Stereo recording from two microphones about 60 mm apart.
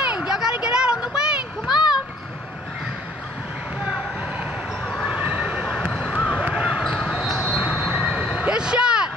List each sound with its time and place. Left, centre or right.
0.0 s a sound: centre
4.8 s basketball bounce: centre
5.1 s neigh: right
5.4 s a sound: centre
6.5 s basketball bounce: centre
7.1 s basketball bounce: centre
7.5 s vehicle: centre